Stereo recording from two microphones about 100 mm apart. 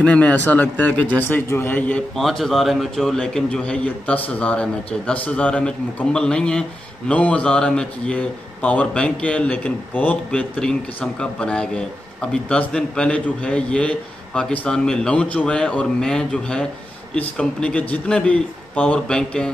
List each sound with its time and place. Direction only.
0.0 s a man's voice: 15° left (ahead or behind)
2.1 s a man's voice: centre (ahead or behind)